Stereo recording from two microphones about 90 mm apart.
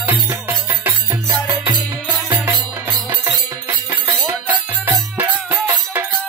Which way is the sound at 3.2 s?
30° right (ahead or behind).